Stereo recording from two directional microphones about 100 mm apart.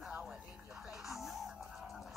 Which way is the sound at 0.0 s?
5° right (ahead or behind).